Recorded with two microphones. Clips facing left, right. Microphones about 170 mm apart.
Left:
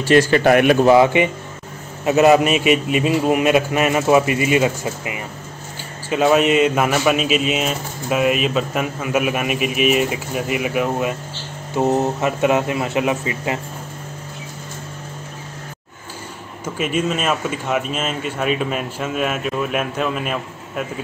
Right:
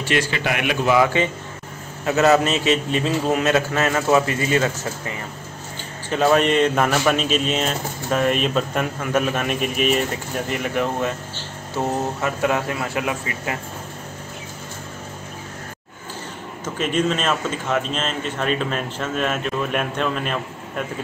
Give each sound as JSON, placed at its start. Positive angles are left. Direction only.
{"t": 0.0, "sound": "a man's voice", "side_deg": 40}
{"t": 0.9, "sound": "a man's voice", "side_deg": 20}
{"t": 11.7, "sound": "speech", "side_deg": 20}
{"t": 16.6, "sound": "a man's voice", "side_deg": 10}